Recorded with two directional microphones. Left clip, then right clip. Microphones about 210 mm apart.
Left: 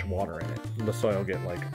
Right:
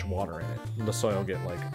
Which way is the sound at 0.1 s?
Centre (ahead or behind).